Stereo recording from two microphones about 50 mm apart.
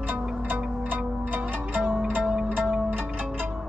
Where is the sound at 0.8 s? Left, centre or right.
Right.